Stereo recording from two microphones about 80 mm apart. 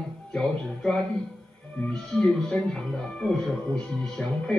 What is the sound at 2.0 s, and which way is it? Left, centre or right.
Speech, centre.